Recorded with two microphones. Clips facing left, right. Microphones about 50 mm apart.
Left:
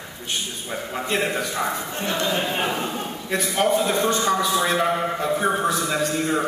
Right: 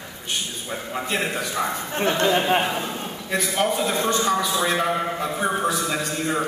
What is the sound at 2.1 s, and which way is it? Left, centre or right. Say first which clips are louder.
Speech: right 3 dB; right.